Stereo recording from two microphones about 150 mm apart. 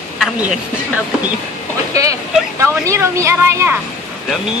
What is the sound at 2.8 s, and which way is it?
Speech, 20° right (ahead or behind).